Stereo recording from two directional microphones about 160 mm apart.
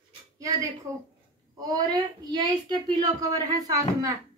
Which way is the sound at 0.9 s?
20° right (ahead or behind).